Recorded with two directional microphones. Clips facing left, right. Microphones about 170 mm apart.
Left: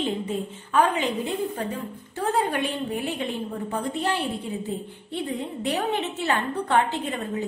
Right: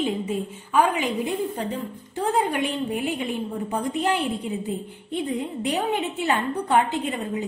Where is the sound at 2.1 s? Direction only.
15° right (ahead or behind).